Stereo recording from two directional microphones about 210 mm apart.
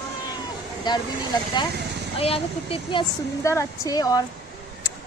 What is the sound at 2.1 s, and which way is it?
Speech, 25° left (ahead or behind).